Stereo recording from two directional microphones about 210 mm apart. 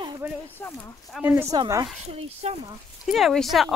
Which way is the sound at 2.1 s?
30° right (ahead or behind).